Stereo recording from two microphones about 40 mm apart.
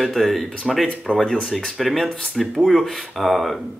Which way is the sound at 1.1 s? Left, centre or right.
Left.